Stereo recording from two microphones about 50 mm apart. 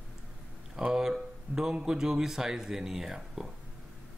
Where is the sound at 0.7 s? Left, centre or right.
Centre.